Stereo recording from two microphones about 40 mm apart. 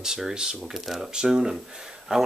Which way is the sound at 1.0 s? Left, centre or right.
Centre.